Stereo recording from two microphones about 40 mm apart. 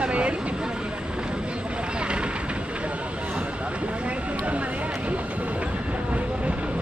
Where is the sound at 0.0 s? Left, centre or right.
Right.